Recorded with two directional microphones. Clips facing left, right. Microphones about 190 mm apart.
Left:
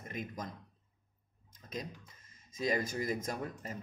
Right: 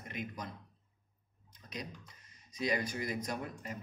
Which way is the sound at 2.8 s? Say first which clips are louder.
Left 2 dB; 45° left (ahead or behind).